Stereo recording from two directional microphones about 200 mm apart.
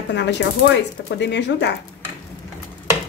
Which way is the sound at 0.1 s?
60° left (ahead or behind).